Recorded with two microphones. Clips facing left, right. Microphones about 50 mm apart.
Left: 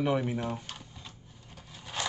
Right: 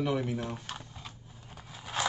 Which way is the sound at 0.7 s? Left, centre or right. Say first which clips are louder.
Right 2 dB; centre.